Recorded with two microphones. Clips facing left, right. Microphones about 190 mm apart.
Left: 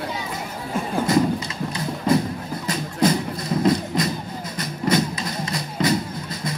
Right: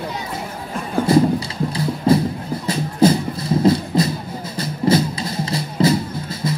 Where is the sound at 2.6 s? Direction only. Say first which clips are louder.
Right 5 dB; 30° right (ahead or behind).